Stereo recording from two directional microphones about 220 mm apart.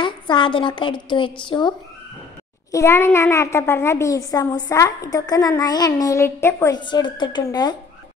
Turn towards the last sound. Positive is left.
turn(degrees=15)  # may be behind; listen again after turning